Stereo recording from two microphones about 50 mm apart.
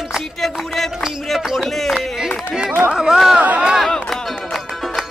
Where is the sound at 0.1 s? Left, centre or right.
Centre.